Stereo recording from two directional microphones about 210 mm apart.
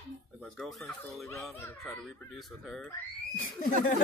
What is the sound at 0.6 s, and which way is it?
Speech, centre (ahead or behind).